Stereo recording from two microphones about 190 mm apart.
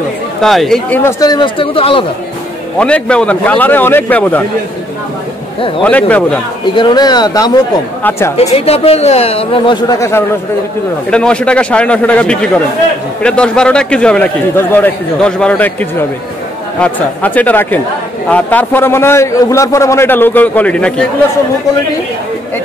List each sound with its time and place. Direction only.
0.4 s a man's voice: centre (ahead or behind)
1.2 s speech: 25° left (ahead or behind)
2.8 s a man's voice: 5° left (ahead or behind)
5.9 s a man's voice: 5° left (ahead or behind)
6.7 s a woman's voice: 25° left (ahead or behind)
8.4 s speech: 30° left (ahead or behind); by 10.2 s 15° left (ahead or behind)
11.1 s a man's voice: 5° left (ahead or behind)